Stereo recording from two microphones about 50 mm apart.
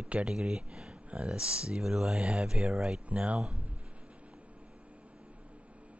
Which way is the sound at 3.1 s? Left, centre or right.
Right.